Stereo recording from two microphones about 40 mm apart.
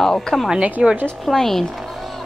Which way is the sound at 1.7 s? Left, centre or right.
Centre.